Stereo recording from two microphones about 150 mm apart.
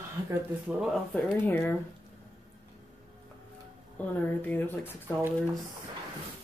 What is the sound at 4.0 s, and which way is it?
Speech, 10° left (ahead or behind).